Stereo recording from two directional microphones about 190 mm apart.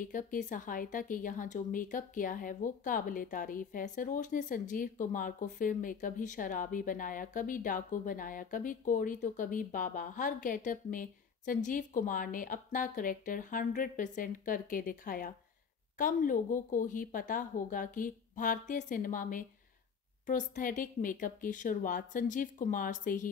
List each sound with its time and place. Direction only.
0.0 s a woman's voice: 45° left (ahead or behind)